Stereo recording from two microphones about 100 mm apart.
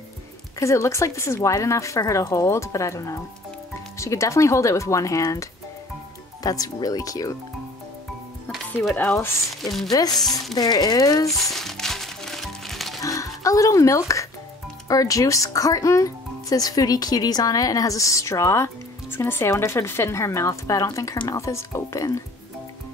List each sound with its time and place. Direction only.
0.6 s speech: 30° left (ahead or behind)
9.6 s speech: centre (ahead or behind)
9.8 s speech: 40° left (ahead or behind)
11.4 s music: 5° left (ahead or behind)
13.0 s speech: 35° left (ahead or behind)